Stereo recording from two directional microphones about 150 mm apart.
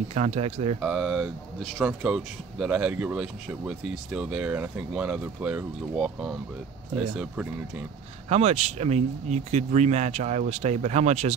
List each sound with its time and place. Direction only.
0.1 s speech: 50° right (ahead or behind)
0.7 s speech: centre (ahead or behind)
8.3 s speech: 45° right (ahead or behind)